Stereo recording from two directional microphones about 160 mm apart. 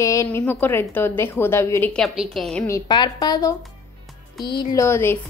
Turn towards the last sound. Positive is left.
turn(degrees=15)  # may be behind; listen again after turning